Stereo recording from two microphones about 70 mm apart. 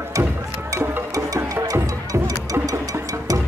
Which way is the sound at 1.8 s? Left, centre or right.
Right.